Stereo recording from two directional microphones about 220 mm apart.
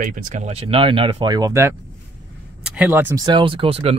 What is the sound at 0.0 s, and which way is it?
Speech, 35° right (ahead or behind).